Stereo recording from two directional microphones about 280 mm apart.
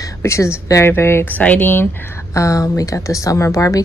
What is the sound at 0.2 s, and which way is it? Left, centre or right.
Speech, centre.